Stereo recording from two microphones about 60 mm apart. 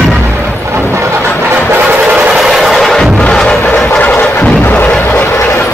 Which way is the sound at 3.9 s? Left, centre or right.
Left.